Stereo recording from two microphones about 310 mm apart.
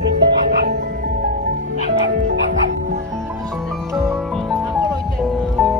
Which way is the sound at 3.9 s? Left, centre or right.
Centre.